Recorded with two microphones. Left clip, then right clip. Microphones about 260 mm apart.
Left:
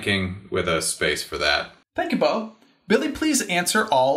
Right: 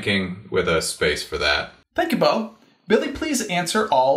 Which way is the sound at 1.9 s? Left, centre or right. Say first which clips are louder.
Right 2 dB; centre.